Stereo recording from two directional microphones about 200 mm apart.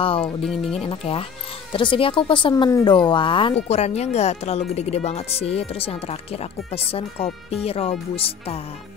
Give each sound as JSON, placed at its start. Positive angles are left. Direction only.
{"t": 0.0, "sound": "speech", "side_deg": 25}
{"t": 0.4, "sound": "speech", "side_deg": 0}
{"t": 0.7, "sound": "speech", "side_deg": 30}